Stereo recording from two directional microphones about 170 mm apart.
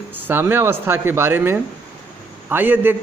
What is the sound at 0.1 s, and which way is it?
A man's voice, 10° right (ahead or behind).